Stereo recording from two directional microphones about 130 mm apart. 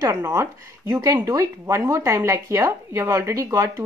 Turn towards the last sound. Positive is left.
turn(degrees=-25)  # may be behind; listen again after turning